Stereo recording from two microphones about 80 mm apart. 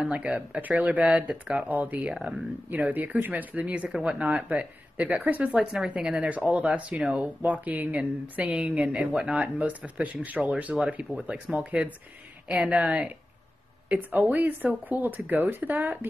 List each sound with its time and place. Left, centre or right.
0.0 s speech: centre
5.6 s speech: centre; by 16.1 s right